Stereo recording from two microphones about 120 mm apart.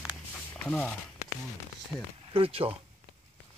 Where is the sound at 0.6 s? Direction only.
10° left (ahead or behind).